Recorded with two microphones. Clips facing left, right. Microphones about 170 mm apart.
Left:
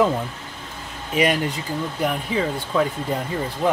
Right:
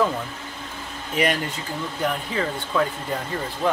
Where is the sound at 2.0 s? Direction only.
10° left (ahead or behind).